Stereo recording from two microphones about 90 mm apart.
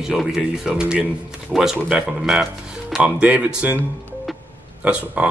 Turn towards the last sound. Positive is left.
turn(degrees=-15)  # may be behind; listen again after turning